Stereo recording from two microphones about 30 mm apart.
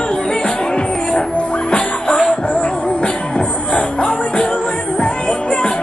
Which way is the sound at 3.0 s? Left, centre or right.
Left.